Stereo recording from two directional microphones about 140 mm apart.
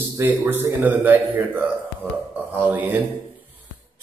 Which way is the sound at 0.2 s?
15° right (ahead or behind).